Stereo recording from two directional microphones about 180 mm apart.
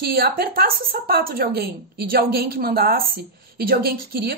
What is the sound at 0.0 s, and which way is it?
A woman's voice, 60° right (ahead or behind).